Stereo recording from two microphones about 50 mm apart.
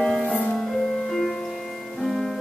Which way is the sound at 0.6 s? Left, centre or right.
Centre.